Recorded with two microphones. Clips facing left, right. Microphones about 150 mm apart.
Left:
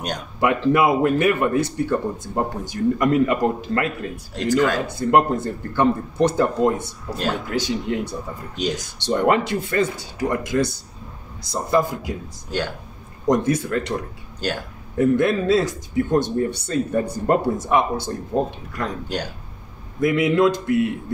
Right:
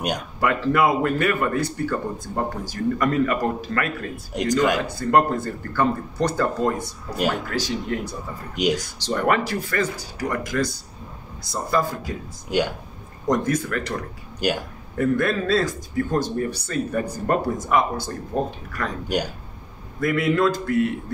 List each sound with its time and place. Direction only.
0.4 s speech: 20° left (ahead or behind)
4.4 s speech: 15° right (ahead or behind)
4.9 s speech: 25° left (ahead or behind)
8.5 s speech: 10° right (ahead or behind)
9.0 s speech: 20° left (ahead or behind)
12.4 s speech: 15° right (ahead or behind)
13.3 s speech: 20° left (ahead or behind)
14.4 s speech: 10° right (ahead or behind)
15.0 s speech: 20° left (ahead or behind)
20.0 s speech: 20° left (ahead or behind)